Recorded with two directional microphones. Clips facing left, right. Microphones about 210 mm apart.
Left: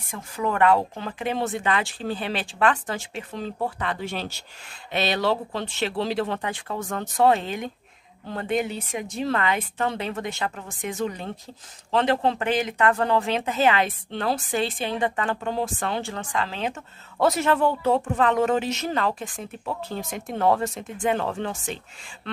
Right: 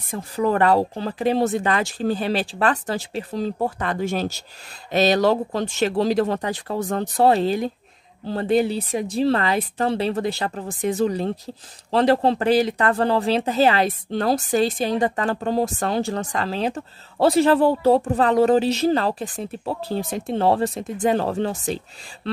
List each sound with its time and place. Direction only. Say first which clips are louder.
0.1 s speech: right 6 dB; 35° right (ahead or behind)